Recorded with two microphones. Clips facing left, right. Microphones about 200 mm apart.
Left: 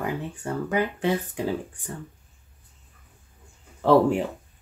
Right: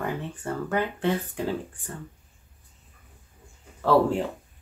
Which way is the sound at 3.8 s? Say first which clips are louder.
Left 3 dB; 15° left (ahead or behind).